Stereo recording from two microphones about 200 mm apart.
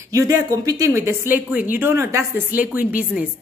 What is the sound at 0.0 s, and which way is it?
Speech, 15° right (ahead or behind).